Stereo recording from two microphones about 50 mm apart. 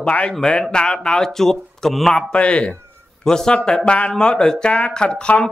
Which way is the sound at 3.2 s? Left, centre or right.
Centre.